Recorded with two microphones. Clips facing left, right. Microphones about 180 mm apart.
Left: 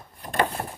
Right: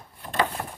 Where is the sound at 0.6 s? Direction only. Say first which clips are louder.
Left 2 dB; 35° left (ahead or behind).